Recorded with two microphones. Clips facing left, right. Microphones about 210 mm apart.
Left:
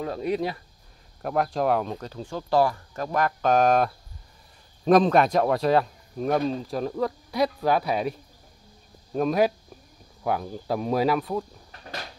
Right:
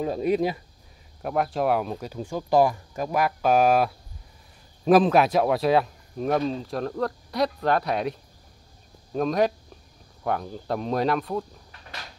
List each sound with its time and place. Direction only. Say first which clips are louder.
0.0 s speech: right 3 dB; 20° right (ahead or behind)
1.2 s speech: even; centre (ahead or behind)